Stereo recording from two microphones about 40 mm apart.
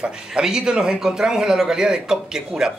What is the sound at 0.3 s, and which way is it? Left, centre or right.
Speech, centre.